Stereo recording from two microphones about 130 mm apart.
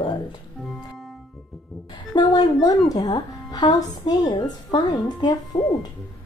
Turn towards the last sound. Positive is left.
turn(degrees=30)  # may be behind; listen again after turning